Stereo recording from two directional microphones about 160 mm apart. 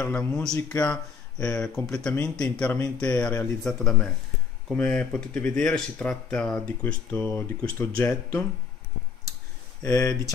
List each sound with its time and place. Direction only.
0.0 s speech: 10° left (ahead or behind)
9.8 s speech: 5° left (ahead or behind)